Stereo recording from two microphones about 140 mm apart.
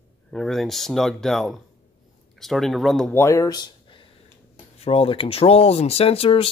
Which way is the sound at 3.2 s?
20° left (ahead or behind).